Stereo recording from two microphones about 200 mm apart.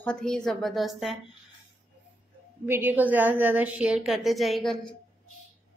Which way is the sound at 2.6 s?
10° right (ahead or behind).